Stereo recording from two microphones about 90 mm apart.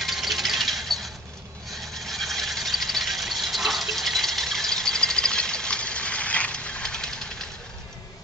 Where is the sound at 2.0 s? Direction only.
5° left (ahead or behind).